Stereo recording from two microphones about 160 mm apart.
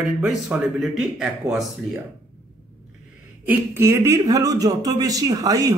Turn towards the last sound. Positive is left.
turn(degrees=-20)  # may be behind; listen again after turning